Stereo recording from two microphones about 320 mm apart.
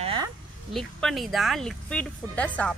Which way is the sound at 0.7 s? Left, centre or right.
Centre.